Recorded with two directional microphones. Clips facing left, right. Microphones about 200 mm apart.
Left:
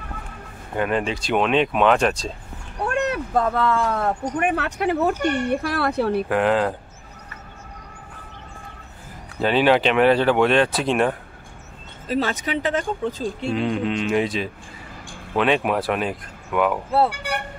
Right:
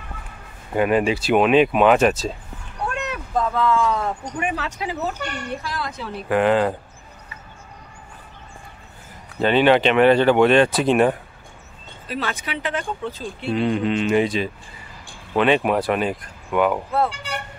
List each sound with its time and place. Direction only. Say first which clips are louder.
0.7 s speech: right 4 dB; 10° right (ahead or behind)
2.9 s speech: left 6 dB; 60° left (ahead or behind)
6.2 s speech: right 7 dB; centre (ahead or behind)
9.4 s speech: right 2 dB; 5° left (ahead or behind)
12.1 s speech: left 5 dB; 40° left (ahead or behind)
13.4 s speech: right 3 dB; centre (ahead or behind)
17.1 s speech: left 3 dB; 60° left (ahead or behind)